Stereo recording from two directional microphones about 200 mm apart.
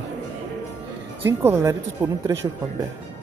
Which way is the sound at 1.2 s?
10° right (ahead or behind).